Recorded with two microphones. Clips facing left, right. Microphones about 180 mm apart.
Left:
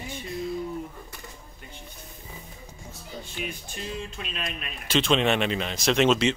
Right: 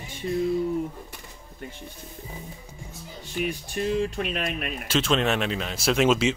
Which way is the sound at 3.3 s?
50° right (ahead or behind).